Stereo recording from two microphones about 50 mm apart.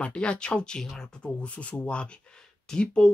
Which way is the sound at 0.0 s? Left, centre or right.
Left.